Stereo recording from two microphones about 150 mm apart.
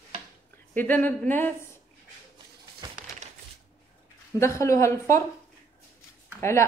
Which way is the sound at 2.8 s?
30° right (ahead or behind).